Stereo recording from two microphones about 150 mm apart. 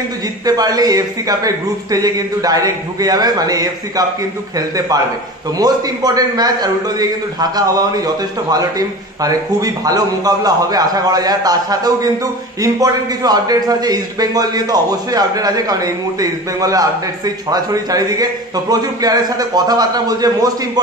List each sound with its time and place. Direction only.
0.5 s a man's voice: 25° right (ahead or behind)